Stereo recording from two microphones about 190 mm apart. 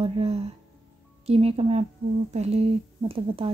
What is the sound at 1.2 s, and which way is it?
Speech, 35° right (ahead or behind).